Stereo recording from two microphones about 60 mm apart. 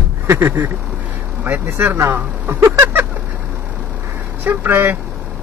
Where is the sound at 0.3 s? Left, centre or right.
Right.